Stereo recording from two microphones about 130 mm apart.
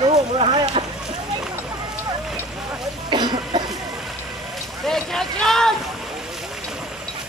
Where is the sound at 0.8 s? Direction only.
45° right (ahead or behind).